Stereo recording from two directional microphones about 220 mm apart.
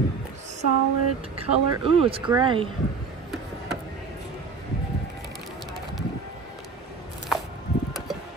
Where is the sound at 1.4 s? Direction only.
25° right (ahead or behind).